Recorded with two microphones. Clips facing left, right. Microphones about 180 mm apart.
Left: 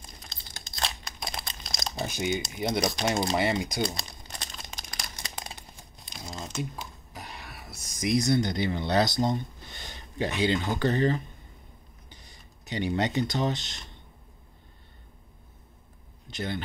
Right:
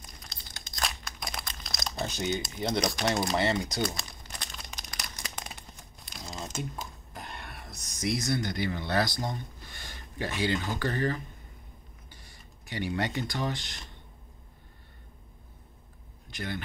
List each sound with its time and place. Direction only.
0.7 s crumpling: 25° left (ahead or behind)
2.0 s speech: 10° left (ahead or behind)
3.1 s speech: 25° left (ahead or behind)
3.3 s speech: 10° left (ahead or behind)
4.3 s crumpling: 25° left (ahead or behind)
6.6 s whispering: centre (ahead or behind)
8.1 s speech: 20° left (ahead or behind)
16.3 s speech: 25° left (ahead or behind)